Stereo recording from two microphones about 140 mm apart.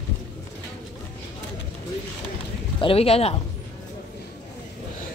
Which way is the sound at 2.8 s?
45° left (ahead or behind).